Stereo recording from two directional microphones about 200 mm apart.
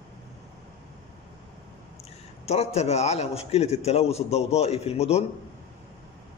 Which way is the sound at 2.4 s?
30° left (ahead or behind).